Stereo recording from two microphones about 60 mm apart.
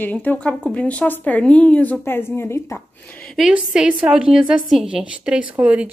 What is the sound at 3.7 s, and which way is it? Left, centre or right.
A woman's voice, centre.